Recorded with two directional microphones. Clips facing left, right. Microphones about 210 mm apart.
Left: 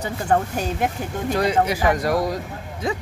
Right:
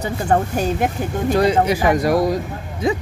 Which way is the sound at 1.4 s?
25° right (ahead or behind).